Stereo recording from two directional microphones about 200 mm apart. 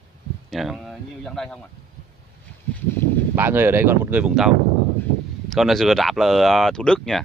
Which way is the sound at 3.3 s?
10° right (ahead or behind).